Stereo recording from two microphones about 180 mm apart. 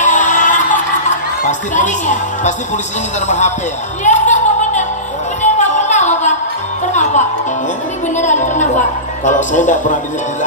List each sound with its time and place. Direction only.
0.0 s music: 45° left (ahead or behind)
1.4 s a woman's voice: 45° left (ahead or behind)
4.0 s music: 45° left (ahead or behind)
8.2 s speech: 40° left (ahead or behind)